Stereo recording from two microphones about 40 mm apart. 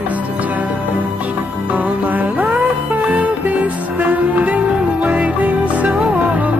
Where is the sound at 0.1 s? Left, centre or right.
Right.